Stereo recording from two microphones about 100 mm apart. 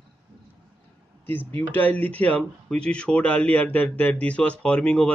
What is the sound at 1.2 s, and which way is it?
Speech, 20° left (ahead or behind).